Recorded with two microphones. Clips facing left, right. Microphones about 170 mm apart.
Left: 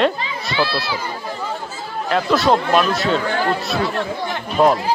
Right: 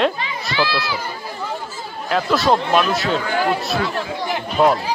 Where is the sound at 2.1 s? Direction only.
Centre (ahead or behind).